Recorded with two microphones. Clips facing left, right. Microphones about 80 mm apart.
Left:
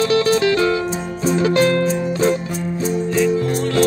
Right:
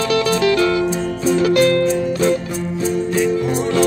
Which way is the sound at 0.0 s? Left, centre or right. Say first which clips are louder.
Left 1 dB; left.